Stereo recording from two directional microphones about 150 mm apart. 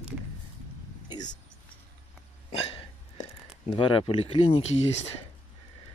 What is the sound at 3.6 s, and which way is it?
Speech, 35° left (ahead or behind).